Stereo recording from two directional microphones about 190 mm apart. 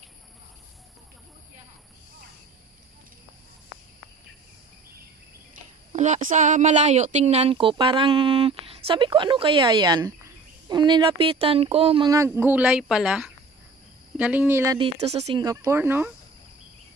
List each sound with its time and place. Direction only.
5.9 s speech: 40° right (ahead or behind)
12.1 s speech: 15° right (ahead or behind)
14.8 s speech: 35° right (ahead or behind)
15.4 s speech: 15° right (ahead or behind)